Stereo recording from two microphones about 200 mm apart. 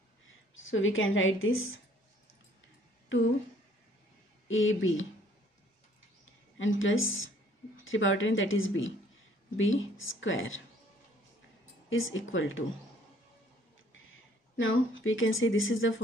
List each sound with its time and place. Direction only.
0.6 s a woman's voice: 75° left (ahead or behind)
4.5 s speech: 75° left (ahead or behind)
6.6 s a woman's voice: 75° left (ahead or behind)
11.9 s a woman's voice: 75° left (ahead or behind)
13.9 s a woman's voice: 75° left (ahead or behind)